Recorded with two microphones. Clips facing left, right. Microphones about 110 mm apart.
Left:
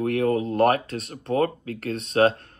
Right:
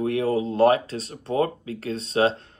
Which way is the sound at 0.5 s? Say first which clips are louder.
Right 2 dB; 55° left (ahead or behind).